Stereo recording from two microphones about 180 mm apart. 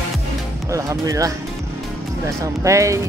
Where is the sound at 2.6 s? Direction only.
15° right (ahead or behind).